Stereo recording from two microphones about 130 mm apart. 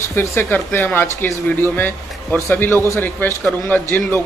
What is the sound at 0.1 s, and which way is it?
Speech, 20° left (ahead or behind).